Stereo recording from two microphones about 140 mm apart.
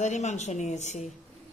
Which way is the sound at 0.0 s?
55° left (ahead or behind).